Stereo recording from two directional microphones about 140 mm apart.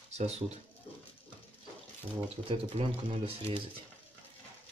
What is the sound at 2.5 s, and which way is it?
Speech, 40° right (ahead or behind).